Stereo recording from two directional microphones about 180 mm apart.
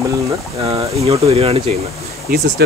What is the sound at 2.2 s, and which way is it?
Speech, 60° right (ahead or behind).